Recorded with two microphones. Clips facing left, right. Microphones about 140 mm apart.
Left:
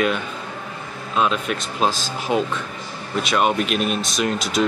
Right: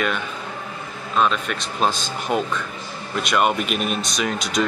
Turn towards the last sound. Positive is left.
turn(degrees=0)  # may be behind; listen again after turning